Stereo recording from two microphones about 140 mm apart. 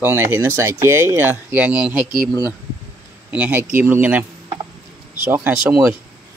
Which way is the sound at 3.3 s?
10° right (ahead or behind).